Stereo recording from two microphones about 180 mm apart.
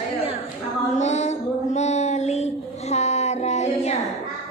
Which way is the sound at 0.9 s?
40° left (ahead or behind).